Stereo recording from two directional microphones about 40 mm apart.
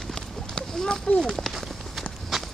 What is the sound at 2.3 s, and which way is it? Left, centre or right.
Walk, centre.